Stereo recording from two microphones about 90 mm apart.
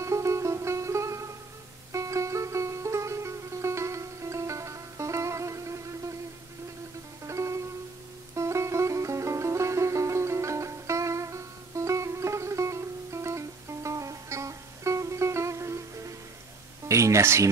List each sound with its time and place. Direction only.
0.0 s music: 35° right (ahead or behind)
7.2 s music: 35° right (ahead or behind)
16.8 s speech: 35° right (ahead or behind)